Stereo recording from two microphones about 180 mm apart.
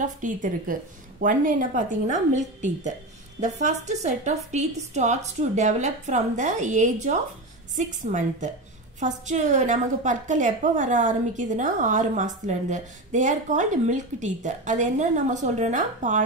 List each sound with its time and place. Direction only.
0.0 s a woman's voice: 45° right (ahead or behind)